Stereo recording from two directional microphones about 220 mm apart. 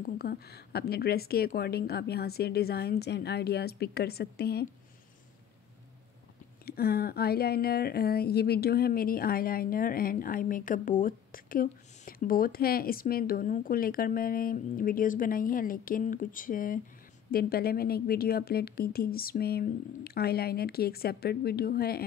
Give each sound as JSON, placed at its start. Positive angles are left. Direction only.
{"t": 0.0, "sound": "a woman's voice", "side_deg": 45}
{"t": 6.6, "sound": "a woman's voice", "side_deg": 45}